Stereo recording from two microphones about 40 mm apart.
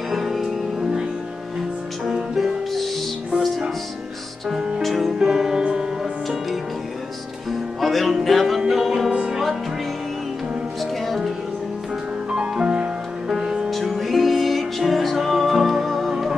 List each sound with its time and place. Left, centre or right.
0.1 s music: centre
2.0 s music: centre
4.8 s music: centre
5.6 s music: centre
7.8 s music: centre
12.3 s music: centre
13.8 s music: centre